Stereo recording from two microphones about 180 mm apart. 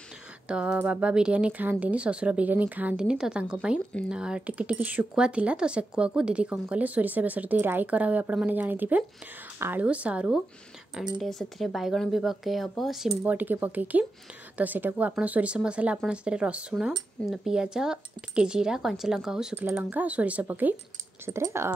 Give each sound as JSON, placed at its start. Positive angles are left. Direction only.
{"t": 0.5, "sound": "speech", "side_deg": -5}